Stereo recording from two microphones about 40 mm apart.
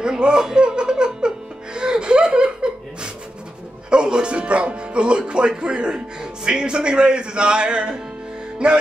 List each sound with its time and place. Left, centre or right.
0.0 s music: centre
6.4 s a man's voice: right